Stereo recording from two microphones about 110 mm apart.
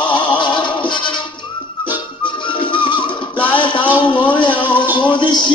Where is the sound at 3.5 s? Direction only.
45° left (ahead or behind).